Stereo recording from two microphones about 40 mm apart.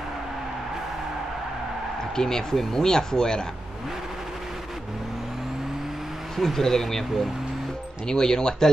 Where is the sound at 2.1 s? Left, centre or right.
Centre.